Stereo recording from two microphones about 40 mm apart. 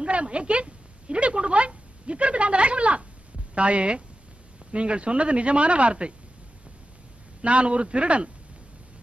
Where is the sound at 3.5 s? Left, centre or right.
Right.